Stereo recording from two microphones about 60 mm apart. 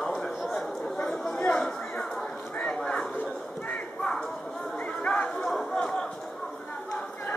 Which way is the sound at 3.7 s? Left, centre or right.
Centre.